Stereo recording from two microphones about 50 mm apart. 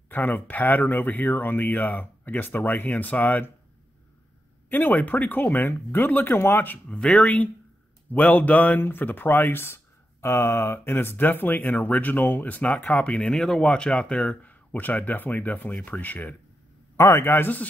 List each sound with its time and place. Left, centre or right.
0.1 s speech: left
4.6 s speech: left
5.6 s speech: left
6.9 s speech: centre; by 9.8 s left
10.2 s speech: left
13.3 s speech: centre; by 16.3 s left
16.9 s speech: left
17.2 s speech: left